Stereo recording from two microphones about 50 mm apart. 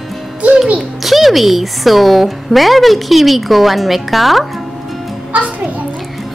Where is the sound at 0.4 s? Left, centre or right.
Right.